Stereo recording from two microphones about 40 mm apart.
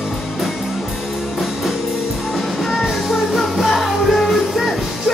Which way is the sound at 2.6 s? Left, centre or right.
Centre.